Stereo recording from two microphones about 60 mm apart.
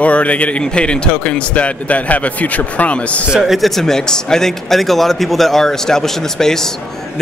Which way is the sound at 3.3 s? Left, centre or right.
Centre.